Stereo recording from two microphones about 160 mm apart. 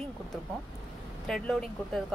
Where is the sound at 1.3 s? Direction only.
5° left (ahead or behind).